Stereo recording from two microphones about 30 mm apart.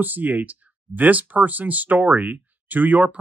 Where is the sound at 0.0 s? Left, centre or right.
Right.